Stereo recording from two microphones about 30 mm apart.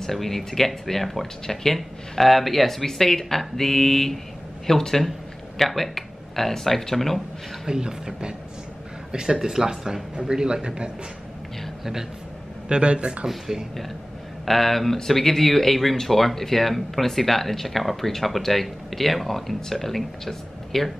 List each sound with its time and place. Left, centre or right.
0.0 s speech: centre
7.6 s speech: right
11.8 s speech: centre
12.6 s speech: right
14.4 s speech: centre